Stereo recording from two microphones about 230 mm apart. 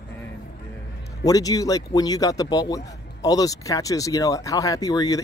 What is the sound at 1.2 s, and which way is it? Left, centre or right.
Speech, centre.